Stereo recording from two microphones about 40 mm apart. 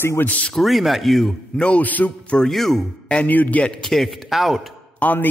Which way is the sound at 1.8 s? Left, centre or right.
Left.